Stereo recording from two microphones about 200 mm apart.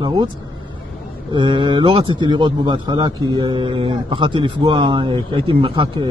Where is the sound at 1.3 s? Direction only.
25° right (ahead or behind).